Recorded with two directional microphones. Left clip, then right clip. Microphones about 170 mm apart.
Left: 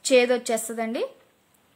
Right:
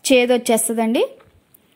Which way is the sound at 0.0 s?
30° right (ahead or behind).